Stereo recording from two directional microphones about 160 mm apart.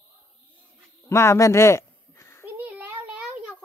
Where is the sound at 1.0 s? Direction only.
15° left (ahead or behind).